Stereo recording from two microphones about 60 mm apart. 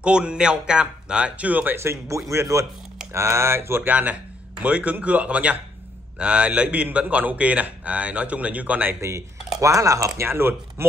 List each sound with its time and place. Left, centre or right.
0.0 s speech: centre
1.8 s speech: right
3.1 s speech: right
3.8 s a man's voice: right
9.6 s speech: right
10.2 s speech: right